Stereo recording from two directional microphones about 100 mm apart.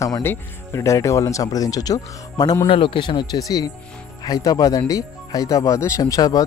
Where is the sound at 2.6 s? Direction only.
60° left (ahead or behind).